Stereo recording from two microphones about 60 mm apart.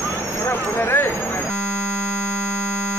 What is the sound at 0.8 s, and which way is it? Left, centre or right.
Vehicle, left.